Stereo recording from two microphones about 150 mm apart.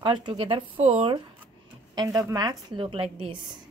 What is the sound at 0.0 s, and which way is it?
Speech, 30° right (ahead or behind).